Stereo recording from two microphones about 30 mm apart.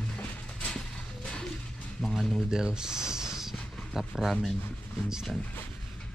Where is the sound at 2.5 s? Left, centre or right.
Right.